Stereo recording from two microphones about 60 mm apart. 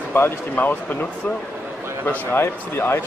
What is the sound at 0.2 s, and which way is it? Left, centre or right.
Speech, left.